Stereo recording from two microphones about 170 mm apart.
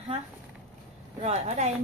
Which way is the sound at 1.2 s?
35° right (ahead or behind).